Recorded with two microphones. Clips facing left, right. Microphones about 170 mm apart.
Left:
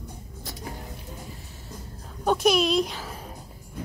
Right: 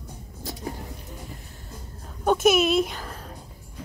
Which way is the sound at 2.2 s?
5° right (ahead or behind).